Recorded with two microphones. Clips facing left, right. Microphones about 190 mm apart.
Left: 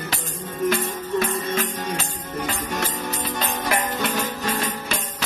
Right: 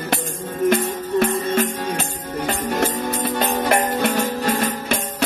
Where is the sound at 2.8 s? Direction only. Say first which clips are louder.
Right 6 dB; 55° right (ahead or behind).